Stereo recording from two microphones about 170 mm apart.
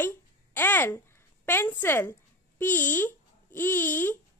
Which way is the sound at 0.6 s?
10° left (ahead or behind).